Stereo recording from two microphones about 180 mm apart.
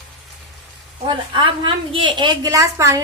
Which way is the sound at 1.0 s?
25° right (ahead or behind).